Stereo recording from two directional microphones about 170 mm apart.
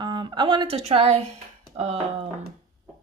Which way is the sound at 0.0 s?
25° right (ahead or behind).